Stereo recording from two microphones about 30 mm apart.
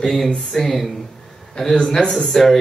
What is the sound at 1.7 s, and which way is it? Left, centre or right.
Speech, left.